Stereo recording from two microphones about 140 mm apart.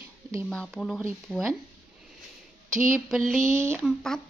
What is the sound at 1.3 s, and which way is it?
Speech, 5° right (ahead or behind).